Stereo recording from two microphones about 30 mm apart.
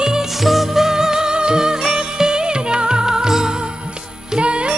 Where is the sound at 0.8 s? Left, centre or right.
Centre.